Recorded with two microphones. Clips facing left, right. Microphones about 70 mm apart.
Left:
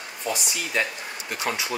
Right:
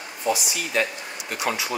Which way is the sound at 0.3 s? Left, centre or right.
Centre.